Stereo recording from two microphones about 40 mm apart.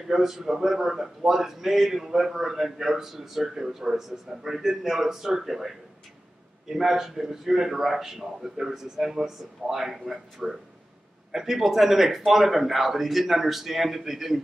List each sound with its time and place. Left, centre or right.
0.1 s a man's voice: centre